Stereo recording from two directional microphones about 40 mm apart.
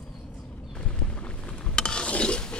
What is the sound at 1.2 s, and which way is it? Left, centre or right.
Mechanisms, left.